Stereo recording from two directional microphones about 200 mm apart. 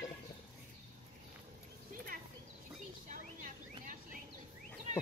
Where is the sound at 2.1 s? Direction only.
45° right (ahead or behind).